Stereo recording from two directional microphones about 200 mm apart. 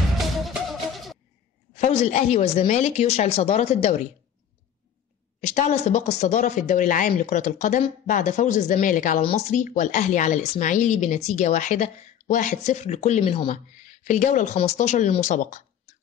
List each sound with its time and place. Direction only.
0.4 s music: centre (ahead or behind)
1.8 s a woman's voice: 40° left (ahead or behind)
5.4 s a woman's voice: 35° left (ahead or behind)
13.5 s a woman's voice: 40° left (ahead or behind)